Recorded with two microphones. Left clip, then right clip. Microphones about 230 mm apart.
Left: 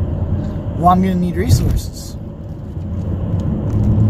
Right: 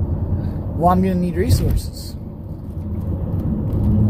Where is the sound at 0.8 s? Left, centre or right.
Left.